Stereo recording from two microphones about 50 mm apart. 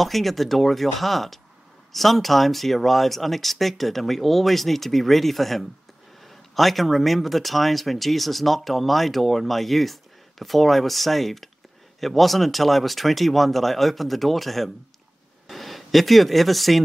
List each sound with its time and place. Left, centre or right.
0.0 s speech: centre